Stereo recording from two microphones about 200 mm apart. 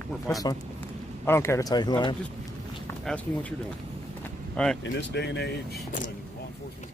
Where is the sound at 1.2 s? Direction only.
10° left (ahead or behind).